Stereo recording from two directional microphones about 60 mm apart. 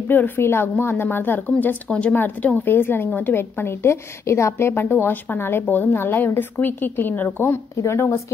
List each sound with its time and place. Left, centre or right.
0.4 s a woman's voice: left
1.9 s a woman's voice: centre
7.7 s speech: left